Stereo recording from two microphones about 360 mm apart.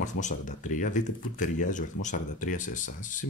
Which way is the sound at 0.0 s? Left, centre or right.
Centre.